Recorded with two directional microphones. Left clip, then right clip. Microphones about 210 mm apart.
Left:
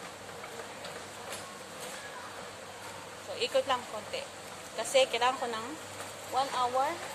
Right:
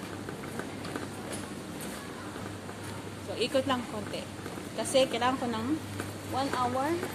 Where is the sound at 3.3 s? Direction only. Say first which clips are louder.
Even; centre (ahead or behind).